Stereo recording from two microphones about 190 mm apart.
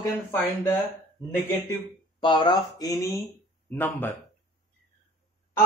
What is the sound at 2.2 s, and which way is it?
Speech, 25° left (ahead or behind).